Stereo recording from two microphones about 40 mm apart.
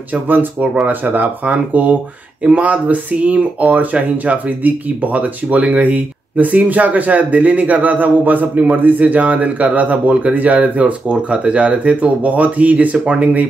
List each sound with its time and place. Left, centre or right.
0.1 s speech: right